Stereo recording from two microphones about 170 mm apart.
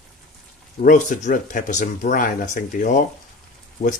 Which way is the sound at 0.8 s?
50° left (ahead or behind).